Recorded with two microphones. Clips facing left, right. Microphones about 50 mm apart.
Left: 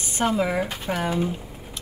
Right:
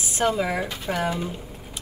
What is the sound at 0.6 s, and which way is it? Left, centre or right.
Speech, centre.